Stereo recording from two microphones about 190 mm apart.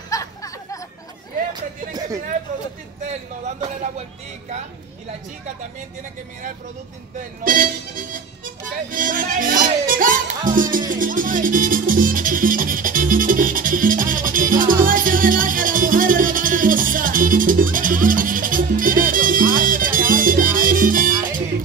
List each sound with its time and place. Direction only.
0.1 s music: 15° left (ahead or behind)
1.5 s a sound: 20° right (ahead or behind)
3.1 s speech: 35° right (ahead or behind)
7.4 s speech: 45° right (ahead or behind)
8.9 s music: 45° right (ahead or behind)